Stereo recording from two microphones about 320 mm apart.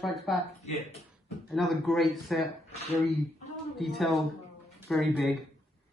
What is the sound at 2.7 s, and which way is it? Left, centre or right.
Speech, centre.